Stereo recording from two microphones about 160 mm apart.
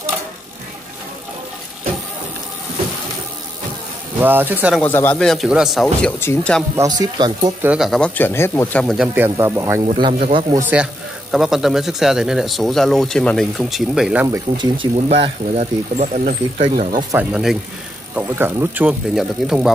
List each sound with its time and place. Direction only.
4.2 s speech: 10° right (ahead or behind)
4.7 s speech: 10° left (ahead or behind)
6.1 s speech: 10° left (ahead or behind)
6.8 s speech: 25° right (ahead or behind)
7.6 s speech: 5° right (ahead or behind); by 8.8 s 15° left (ahead or behind)
8.8 s speech: 5° right (ahead or behind)
9.9 s speech: 30° right (ahead or behind)
11.3 s speech: centre (ahead or behind)
14.2 s speech: 20° right (ahead or behind)
14.8 s speech: 35° right (ahead or behind); by 17.0 s 55° right (ahead or behind)
17.1 s speech: 10° right (ahead or behind)